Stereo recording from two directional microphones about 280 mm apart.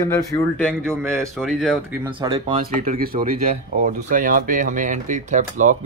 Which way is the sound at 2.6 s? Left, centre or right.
Right.